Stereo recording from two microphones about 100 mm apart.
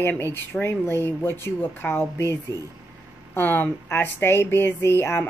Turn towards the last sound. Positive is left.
turn(degrees=25)  # may be behind; listen again after turning